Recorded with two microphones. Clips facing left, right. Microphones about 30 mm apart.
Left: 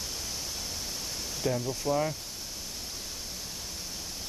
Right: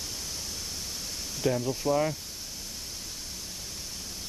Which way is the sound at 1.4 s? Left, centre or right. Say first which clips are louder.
Right 3 dB; centre.